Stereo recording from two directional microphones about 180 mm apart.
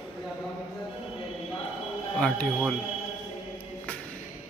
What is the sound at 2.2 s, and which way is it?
Speech, 5° left (ahead or behind).